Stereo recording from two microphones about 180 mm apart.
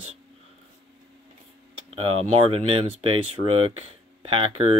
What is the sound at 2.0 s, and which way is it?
Speech, 30° right (ahead or behind).